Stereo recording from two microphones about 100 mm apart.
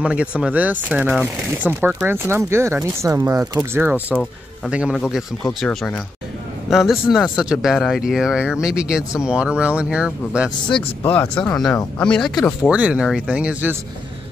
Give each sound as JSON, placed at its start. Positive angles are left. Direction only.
{"t": 0.0, "sound": "speech", "side_deg": -10}
{"t": 3.7, "sound": "speech", "side_deg": -20}
{"t": 4.9, "sound": "speech", "side_deg": 0}
{"t": 11.1, "sound": "speech", "side_deg": 15}
{"t": 12.6, "sound": "speech", "side_deg": -10}